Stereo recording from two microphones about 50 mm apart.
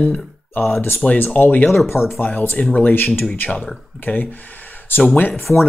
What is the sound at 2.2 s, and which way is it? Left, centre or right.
Speech, left.